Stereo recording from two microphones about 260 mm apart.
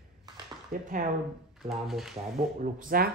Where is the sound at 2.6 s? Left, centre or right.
Right.